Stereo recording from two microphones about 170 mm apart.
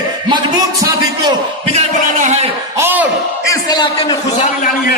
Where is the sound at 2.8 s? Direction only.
10° right (ahead or behind).